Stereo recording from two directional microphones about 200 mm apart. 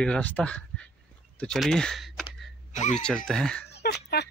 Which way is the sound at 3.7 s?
55° left (ahead or behind).